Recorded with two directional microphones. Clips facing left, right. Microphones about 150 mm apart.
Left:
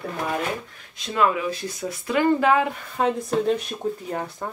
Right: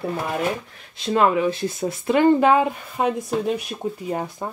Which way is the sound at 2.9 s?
10° right (ahead or behind).